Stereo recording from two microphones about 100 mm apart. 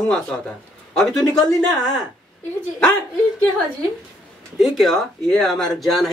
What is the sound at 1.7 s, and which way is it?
Speech, 40° left (ahead or behind).